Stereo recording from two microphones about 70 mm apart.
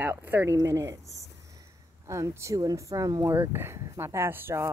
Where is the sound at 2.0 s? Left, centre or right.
Right.